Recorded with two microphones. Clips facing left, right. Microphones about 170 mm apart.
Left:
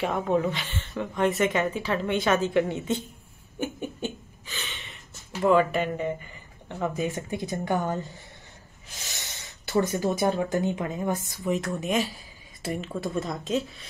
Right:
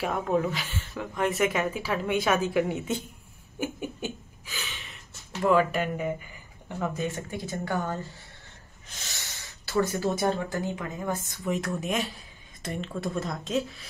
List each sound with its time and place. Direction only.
0.0 s a woman's voice: centre (ahead or behind)
3.5 s a sound: 10° right (ahead or behind)
5.4 s a woman's voice: centre (ahead or behind)
7.2 s speech: 20° left (ahead or behind)
11.2 s a woman's voice: centre (ahead or behind)